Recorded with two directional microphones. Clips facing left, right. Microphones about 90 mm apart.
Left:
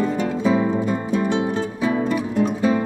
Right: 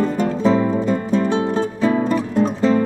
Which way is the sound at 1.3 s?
45° right (ahead or behind).